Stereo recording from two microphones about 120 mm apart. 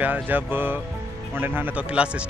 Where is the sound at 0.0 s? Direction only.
15° right (ahead or behind).